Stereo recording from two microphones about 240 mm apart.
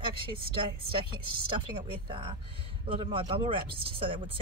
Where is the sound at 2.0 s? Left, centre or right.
Right.